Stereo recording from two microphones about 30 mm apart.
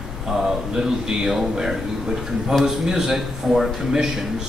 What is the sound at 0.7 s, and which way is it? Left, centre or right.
A man's voice, centre.